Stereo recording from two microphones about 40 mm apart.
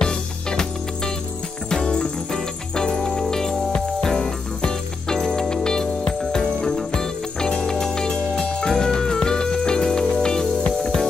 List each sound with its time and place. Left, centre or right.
0.0 s music: centre